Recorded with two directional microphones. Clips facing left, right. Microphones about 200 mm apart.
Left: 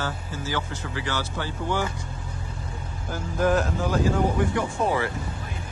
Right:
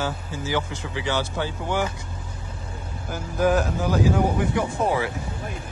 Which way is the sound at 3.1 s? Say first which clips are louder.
Right 1 dB; 5° right (ahead or behind).